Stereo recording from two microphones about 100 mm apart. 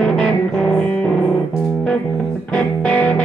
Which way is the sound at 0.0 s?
5° left (ahead or behind).